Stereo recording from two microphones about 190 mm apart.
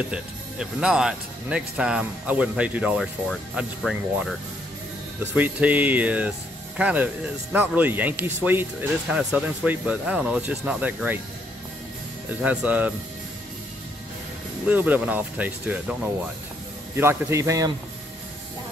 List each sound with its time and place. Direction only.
0.1 s speech: 5° right (ahead or behind)
12.3 s speech: 5° right (ahead or behind)
14.7 s speech: 10° right (ahead or behind)